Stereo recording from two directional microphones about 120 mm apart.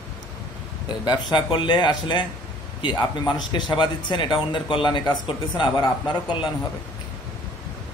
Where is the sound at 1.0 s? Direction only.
40° left (ahead or behind).